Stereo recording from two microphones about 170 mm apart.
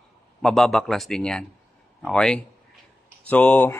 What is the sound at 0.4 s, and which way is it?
Speech, centre (ahead or behind).